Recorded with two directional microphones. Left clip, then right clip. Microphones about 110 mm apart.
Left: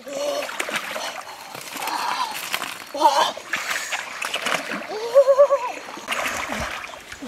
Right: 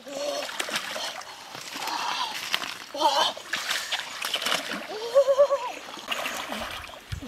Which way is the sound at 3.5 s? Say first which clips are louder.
Left 3 dB; 10° right (ahead or behind).